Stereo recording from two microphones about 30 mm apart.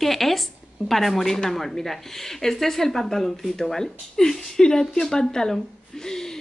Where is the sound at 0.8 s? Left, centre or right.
Centre.